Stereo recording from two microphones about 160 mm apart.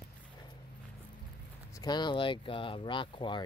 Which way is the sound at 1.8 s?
25° left (ahead or behind).